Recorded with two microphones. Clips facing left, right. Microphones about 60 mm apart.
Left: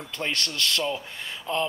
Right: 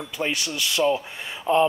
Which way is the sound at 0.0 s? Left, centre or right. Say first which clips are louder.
Right 3 dB; centre.